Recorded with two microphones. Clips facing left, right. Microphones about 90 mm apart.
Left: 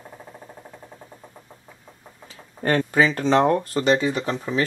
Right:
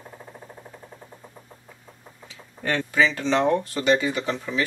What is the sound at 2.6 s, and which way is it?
Speech, 45° left (ahead or behind).